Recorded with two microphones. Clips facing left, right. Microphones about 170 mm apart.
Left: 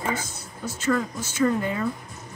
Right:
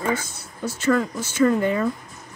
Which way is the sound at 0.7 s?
75° right (ahead or behind).